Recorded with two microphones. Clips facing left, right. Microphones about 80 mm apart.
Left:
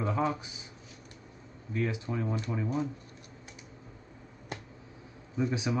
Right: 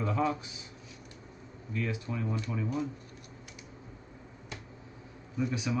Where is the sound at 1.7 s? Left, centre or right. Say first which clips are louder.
Left 2 dB; left.